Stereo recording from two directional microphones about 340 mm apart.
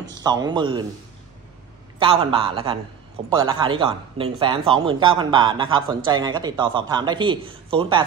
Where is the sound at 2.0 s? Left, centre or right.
Centre.